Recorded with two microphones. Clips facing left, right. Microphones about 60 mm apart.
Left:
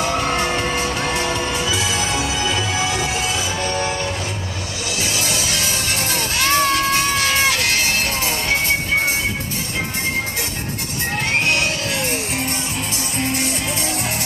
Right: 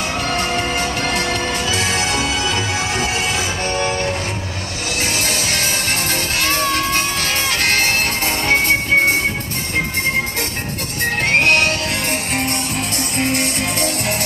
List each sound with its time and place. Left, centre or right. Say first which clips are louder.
0.1 s music: left 1 dB; left
0.7 s bagpipes: right 1 dB; right
5.0 s music: right 2 dB; right
11.2 s music: right 5 dB; right